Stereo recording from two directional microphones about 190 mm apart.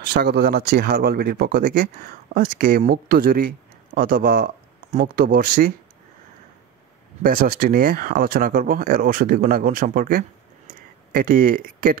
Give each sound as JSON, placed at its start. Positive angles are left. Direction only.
{"t": 0.0, "sound": "speech", "side_deg": -60}
{"t": 7.2, "sound": "speech", "side_deg": -50}